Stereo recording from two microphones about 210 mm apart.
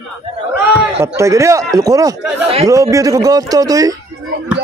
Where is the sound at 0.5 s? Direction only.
15° right (ahead or behind).